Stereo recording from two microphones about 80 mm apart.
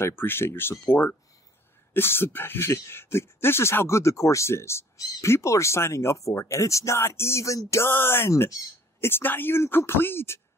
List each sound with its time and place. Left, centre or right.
0.0 s speech: left
2.0 s speech: left